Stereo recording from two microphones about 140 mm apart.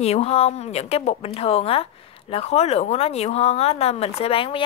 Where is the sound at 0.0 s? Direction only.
50° left (ahead or behind).